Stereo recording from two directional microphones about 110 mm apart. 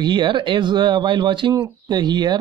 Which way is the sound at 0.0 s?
45° right (ahead or behind).